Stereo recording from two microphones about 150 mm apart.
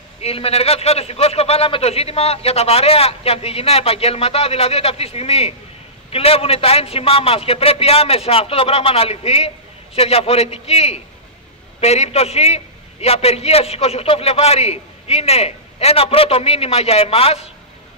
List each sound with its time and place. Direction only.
0.2 s a man's voice: 40° left (ahead or behind)